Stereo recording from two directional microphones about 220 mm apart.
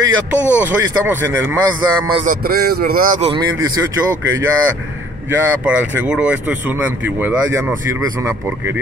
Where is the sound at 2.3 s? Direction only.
45° right (ahead or behind).